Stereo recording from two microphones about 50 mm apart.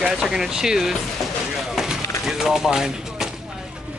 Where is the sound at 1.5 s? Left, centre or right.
Centre.